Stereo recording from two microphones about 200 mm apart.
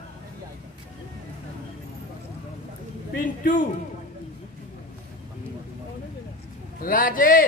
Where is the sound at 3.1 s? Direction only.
40° left (ahead or behind).